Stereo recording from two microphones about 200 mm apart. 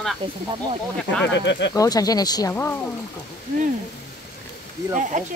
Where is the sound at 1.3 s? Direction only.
60° left (ahead or behind).